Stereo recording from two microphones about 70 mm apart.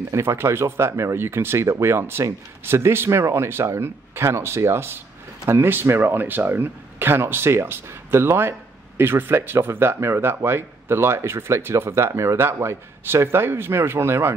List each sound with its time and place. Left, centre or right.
0.1 s speech: right